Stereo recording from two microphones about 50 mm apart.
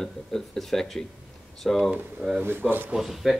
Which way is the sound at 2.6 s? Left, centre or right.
Right.